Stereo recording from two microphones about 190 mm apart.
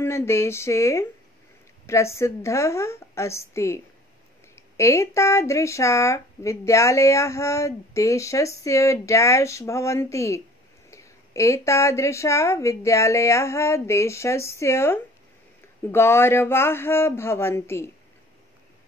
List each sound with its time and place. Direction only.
0.0 s speech: 15° left (ahead or behind)